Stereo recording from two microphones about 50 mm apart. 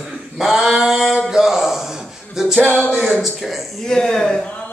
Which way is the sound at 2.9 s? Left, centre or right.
Centre.